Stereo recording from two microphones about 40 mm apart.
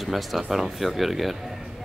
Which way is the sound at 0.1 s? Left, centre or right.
Centre.